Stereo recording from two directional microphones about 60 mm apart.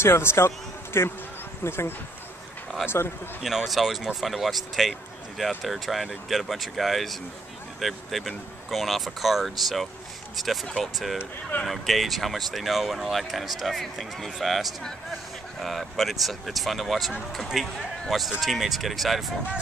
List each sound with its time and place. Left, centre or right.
0.0 s a man's voice: left
2.7 s a sound: centre
3.4 s speech: centre